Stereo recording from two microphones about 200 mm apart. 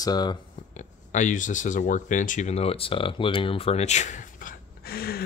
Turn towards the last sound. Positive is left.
turn(degrees=50)  # may be behind; listen again after turning